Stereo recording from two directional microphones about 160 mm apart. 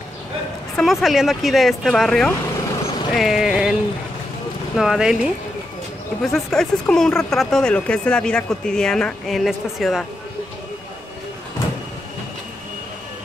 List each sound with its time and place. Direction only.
0.7 s speech: centre (ahead or behind)
4.7 s speech: 5° right (ahead or behind)
6.3 s speech: 5° left (ahead or behind)